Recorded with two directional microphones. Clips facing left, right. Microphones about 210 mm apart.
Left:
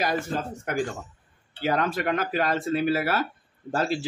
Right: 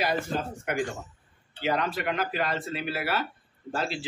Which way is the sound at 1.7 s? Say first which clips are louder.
Left 3 dB; 45° left (ahead or behind).